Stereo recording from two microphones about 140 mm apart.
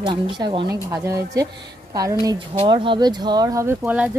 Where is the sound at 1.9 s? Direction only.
25° right (ahead or behind).